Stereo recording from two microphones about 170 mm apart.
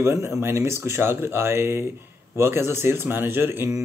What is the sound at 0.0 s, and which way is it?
Speech, 15° right (ahead or behind).